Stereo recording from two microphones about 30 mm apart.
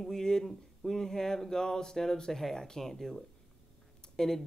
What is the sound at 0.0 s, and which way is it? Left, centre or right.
Speech, centre.